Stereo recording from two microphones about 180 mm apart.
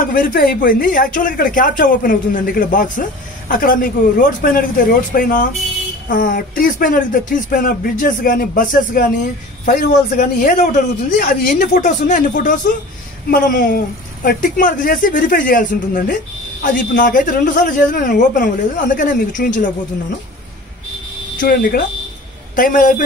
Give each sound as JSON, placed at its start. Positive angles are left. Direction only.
{"t": 0.0, "sound": "speech", "side_deg": 50}
{"t": 21.4, "sound": "speech", "side_deg": 55}